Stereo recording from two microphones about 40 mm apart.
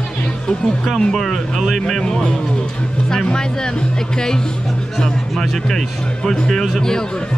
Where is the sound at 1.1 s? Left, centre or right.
Centre.